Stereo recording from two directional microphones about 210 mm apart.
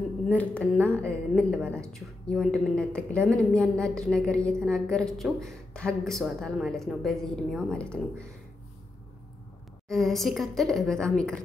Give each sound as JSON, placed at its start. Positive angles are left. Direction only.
{"t": 0.3, "sound": "a woman's voice", "side_deg": 5}
{"t": 9.8, "sound": "a woman's voice", "side_deg": 0}